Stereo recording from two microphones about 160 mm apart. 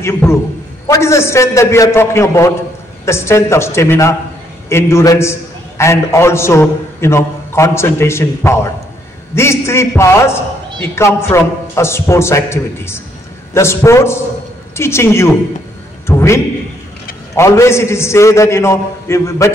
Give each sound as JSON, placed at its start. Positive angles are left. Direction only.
{"t": 0.0, "sound": "a man's voice", "side_deg": 15}
{"t": 17.4, "sound": "a man's voice", "side_deg": 15}